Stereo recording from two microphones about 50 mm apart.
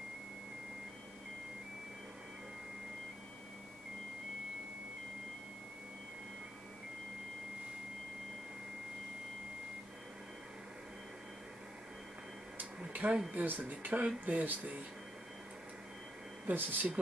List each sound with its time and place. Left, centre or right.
12.9 s a sound: right
13.3 s speech: right
16.4 s speech: right